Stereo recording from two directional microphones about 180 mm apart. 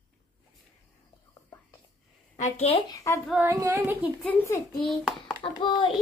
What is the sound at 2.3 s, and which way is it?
Speech, 40° left (ahead or behind).